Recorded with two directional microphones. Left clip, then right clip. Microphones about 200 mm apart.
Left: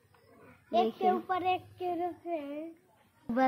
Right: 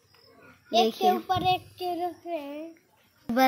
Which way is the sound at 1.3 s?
35° right (ahead or behind).